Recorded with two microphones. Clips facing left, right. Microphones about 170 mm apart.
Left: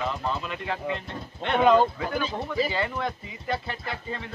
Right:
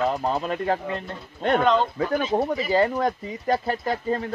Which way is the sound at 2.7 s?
40° right (ahead or behind).